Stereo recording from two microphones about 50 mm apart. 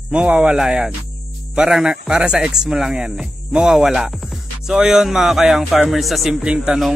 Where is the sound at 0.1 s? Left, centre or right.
Right.